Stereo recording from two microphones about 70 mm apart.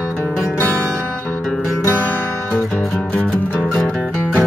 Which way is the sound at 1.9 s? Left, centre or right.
Left.